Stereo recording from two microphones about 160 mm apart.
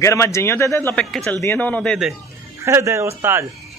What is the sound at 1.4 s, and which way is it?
Speech, 15° left (ahead or behind).